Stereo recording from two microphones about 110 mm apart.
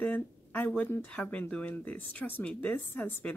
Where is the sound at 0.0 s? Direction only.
15° left (ahead or behind).